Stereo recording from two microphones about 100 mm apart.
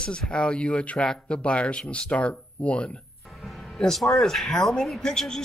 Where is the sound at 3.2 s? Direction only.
Centre (ahead or behind).